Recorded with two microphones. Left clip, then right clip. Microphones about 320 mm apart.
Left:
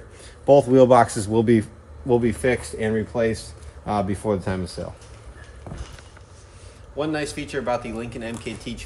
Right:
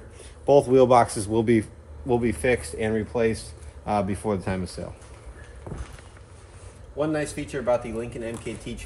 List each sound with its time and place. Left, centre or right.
0.5 s speech: left
5.7 s speech: centre
7.0 s speech: centre